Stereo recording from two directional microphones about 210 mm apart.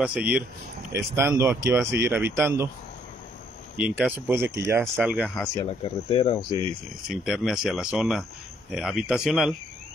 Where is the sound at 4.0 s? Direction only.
10° right (ahead or behind).